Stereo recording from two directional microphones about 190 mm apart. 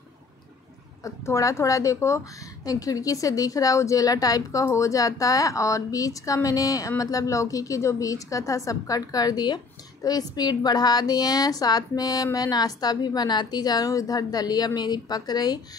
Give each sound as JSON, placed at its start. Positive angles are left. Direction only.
{"t": 1.0, "sound": "a woman's voice", "side_deg": 15}